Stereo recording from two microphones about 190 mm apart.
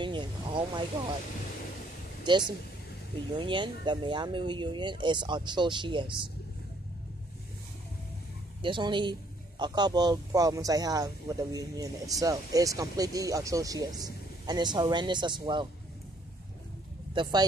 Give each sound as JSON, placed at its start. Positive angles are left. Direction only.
{"t": 0.0, "sound": "vehicle", "side_deg": -25}
{"t": 3.3, "sound": "speech", "side_deg": -25}
{"t": 8.6, "sound": "speech", "side_deg": -25}
{"t": 17.1, "sound": "speech", "side_deg": -25}